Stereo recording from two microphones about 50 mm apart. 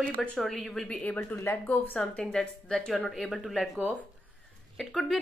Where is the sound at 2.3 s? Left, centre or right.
Centre.